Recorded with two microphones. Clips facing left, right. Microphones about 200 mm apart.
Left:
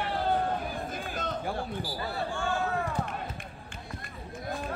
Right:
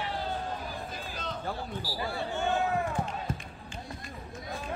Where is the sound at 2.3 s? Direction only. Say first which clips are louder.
Right 4 dB; 20° right (ahead or behind).